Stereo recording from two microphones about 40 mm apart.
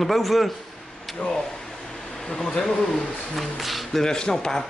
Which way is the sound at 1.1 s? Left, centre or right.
Left.